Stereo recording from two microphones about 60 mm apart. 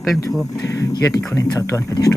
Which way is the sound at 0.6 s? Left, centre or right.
Left.